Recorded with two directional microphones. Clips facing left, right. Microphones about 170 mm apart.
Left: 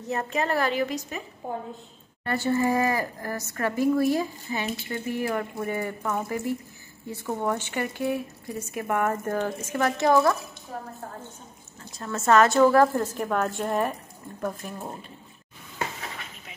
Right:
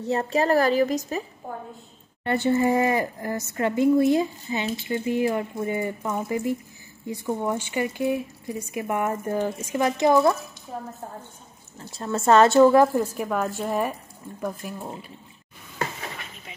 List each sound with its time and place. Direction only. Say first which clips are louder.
0.0 s a woman's voice: right 5 dB; 30° right (ahead or behind)
2.2 s speech: right 3 dB; 20° right (ahead or behind)
12.0 s speech: right 3 dB; 30° right (ahead or behind)
12.8 s speech: right 1 dB; 10° right (ahead or behind)